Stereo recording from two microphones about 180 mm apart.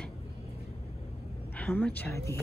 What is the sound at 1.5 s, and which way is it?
Speech, 10° left (ahead or behind).